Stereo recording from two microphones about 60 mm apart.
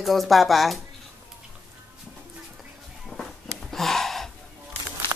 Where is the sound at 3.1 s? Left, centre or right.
Centre.